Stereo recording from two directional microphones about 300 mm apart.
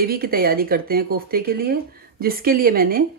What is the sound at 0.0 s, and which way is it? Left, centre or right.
Speech, right.